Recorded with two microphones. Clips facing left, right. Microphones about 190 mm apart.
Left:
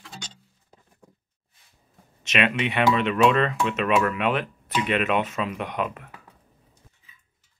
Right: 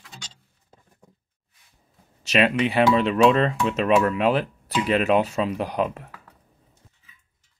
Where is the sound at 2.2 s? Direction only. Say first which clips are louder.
Right 4 dB; 35° right (ahead or behind).